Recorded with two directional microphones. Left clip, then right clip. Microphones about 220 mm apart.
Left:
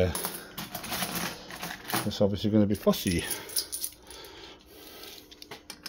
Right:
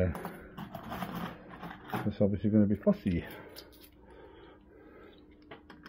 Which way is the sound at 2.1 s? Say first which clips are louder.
Left 3 dB; 5° left (ahead or behind).